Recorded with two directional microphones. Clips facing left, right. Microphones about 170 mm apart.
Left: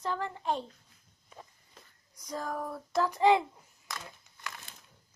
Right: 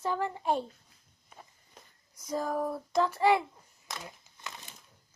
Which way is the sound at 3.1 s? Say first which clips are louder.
Left 3 dB; 15° left (ahead or behind).